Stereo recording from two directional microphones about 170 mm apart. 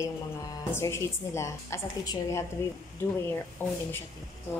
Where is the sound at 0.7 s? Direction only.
15° left (ahead or behind).